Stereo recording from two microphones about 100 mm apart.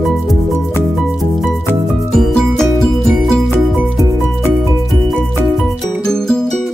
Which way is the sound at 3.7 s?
5° right (ahead or behind).